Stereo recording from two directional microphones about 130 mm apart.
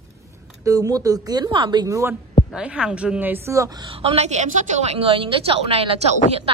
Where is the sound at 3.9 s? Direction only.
50° right (ahead or behind).